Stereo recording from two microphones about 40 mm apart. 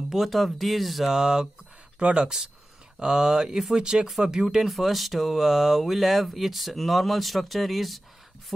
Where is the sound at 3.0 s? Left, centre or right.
Centre.